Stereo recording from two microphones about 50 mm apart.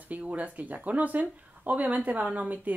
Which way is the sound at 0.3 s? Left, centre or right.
Right.